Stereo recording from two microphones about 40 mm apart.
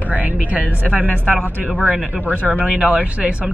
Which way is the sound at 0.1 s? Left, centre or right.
Right.